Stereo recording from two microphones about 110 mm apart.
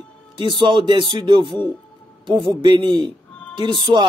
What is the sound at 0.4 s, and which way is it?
Speech, 45° right (ahead or behind).